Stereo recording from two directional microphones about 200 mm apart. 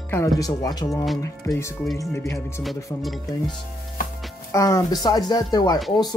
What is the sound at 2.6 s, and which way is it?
Speech, centre (ahead or behind).